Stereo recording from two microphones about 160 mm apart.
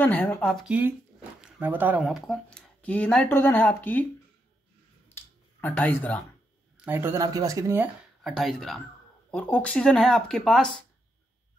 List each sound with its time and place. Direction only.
0.0 s speech: 10° left (ahead or behind)
5.1 s a sound: 15° left (ahead or behind)
6.8 s speech: 15° right (ahead or behind)
8.2 s speech: centre (ahead or behind)